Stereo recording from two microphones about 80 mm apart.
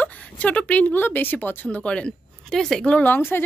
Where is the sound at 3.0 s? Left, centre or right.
Left.